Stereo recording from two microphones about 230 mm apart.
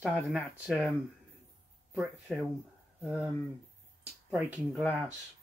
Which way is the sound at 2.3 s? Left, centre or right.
Centre.